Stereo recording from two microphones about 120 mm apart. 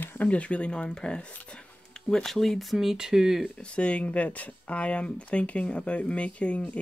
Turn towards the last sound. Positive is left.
turn(degrees=10)  # may be behind; listen again after turning